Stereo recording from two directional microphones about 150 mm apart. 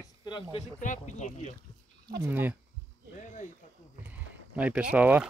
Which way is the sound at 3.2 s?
55° left (ahead or behind).